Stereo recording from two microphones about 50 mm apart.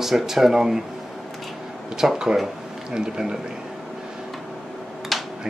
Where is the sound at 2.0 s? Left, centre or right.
Centre.